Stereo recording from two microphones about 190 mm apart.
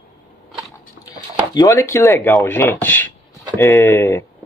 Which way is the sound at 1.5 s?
15° left (ahead or behind).